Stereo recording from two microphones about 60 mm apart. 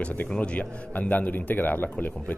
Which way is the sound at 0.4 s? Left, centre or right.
Left.